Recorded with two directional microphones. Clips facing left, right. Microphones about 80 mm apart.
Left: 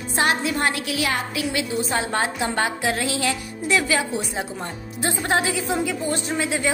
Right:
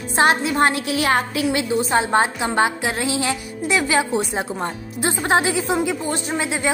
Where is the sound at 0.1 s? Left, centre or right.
Right.